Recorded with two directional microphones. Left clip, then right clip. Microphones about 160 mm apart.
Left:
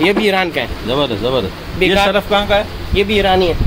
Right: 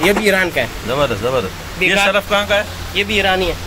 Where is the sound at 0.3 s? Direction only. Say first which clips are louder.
Right 1 dB; 90° left.